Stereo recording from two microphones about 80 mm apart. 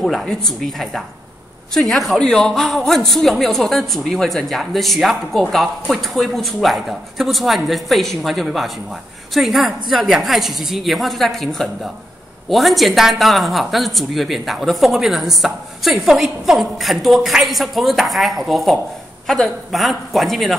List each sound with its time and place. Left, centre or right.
0.0 s speech: centre